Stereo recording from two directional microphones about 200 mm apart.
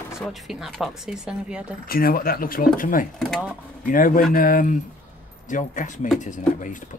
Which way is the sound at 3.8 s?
45° left (ahead or behind).